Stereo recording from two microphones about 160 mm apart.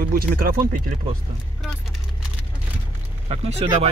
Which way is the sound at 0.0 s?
65° right (ahead or behind).